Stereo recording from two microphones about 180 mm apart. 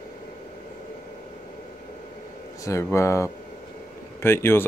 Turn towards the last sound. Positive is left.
turn(degrees=15)  # may be behind; listen again after turning